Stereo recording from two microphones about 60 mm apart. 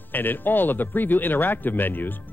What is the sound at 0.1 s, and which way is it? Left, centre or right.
Speech, left.